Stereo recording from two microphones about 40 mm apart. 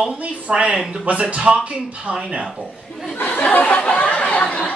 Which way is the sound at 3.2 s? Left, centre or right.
Left.